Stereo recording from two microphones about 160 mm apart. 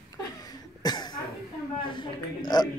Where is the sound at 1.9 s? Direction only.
30° left (ahead or behind).